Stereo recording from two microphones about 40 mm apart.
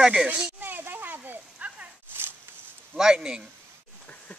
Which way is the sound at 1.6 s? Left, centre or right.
Right.